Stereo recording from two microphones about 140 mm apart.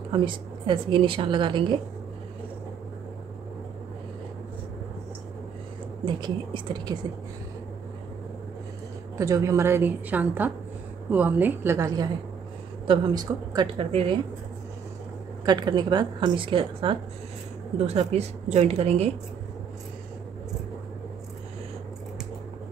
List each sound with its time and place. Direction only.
0.1 s a woman's voice: 35° right (ahead or behind)
6.0 s a woman's voice: 35° right (ahead or behind)
9.2 s a woman's voice: 20° right (ahead or behind)
12.8 s a woman's voice: 35° right (ahead or behind)
13.7 s a woman's voice: 40° right (ahead or behind)
15.4 s a woman's voice: 30° right (ahead or behind)
17.7 s a woman's voice: 50° right (ahead or behind)